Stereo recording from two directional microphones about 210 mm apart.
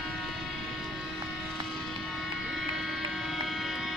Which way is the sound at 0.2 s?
Centre (ahead or behind).